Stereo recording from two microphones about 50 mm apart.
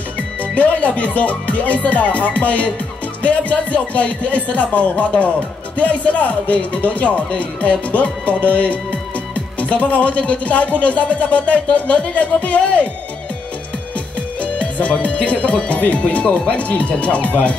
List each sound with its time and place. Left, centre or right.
0.4 s speech: left
14.4 s speech: left